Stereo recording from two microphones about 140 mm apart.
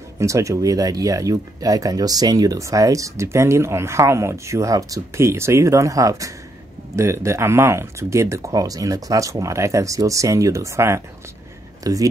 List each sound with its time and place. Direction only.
0.2 s speech: 20° right (ahead or behind)